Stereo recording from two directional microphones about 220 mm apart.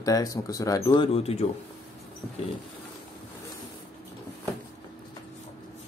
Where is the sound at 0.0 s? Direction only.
15° left (ahead or behind).